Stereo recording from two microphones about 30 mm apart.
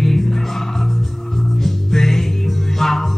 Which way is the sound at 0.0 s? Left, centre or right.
Centre.